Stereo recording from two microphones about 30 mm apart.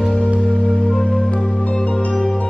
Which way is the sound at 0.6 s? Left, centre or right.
Left.